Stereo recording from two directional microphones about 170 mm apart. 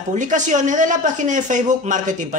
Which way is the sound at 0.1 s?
45° right (ahead or behind).